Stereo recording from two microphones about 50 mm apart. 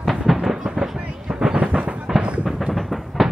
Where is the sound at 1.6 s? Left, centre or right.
Right.